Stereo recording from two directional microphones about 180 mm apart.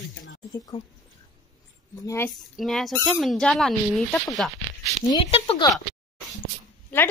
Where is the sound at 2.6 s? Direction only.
Centre (ahead or behind).